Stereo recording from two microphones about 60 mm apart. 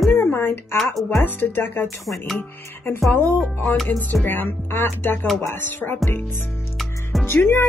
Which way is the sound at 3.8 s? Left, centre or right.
Left.